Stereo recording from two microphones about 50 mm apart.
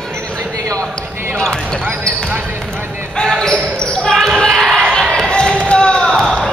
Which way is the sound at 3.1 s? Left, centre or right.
Centre.